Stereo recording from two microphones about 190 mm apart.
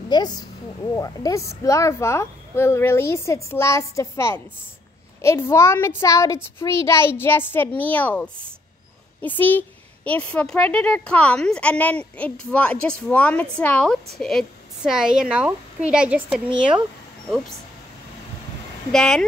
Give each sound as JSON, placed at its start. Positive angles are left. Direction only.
{"t": 0.1, "sound": "a woman's voice", "side_deg": 20}
{"t": 18.9, "sound": "a woman's voice", "side_deg": 5}